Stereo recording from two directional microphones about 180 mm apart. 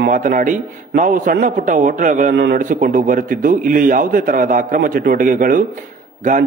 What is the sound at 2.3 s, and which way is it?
Speech, 65° right (ahead or behind).